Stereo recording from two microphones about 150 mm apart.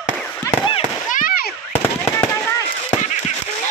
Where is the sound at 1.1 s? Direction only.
65° left (ahead or behind).